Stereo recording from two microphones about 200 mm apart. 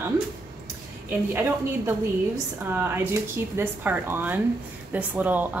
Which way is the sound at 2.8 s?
10° right (ahead or behind).